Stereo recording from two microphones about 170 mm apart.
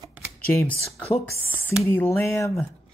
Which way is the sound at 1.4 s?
10° right (ahead or behind).